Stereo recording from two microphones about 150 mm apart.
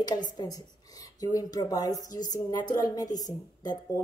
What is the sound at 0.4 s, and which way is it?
A woman's voice, 25° left (ahead or behind).